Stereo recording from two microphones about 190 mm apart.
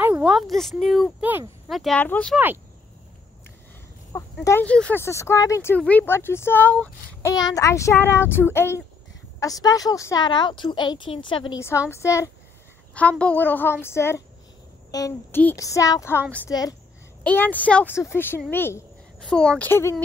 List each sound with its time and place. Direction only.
0.0 s speech: 5° right (ahead or behind)
2.3 s speech: 10° right (ahead or behind)
4.1 s a sound: 15° left (ahead or behind)
4.5 s a woman's voice: 10° left (ahead or behind); by 11.5 s 25° left (ahead or behind)
11.9 s a woman's voice: 15° left (ahead or behind)
17.2 s speech: 10° left (ahead or behind)
18.5 s a sound: 10° left (ahead or behind)
19.2 s speech: 5° left (ahead or behind)